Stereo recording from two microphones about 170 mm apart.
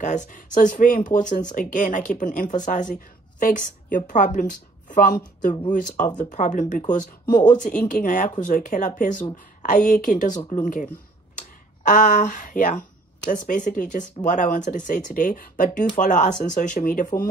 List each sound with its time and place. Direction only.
0.0 s speech: 45° left (ahead or behind)
11.9 s speech: 45° left (ahead or behind)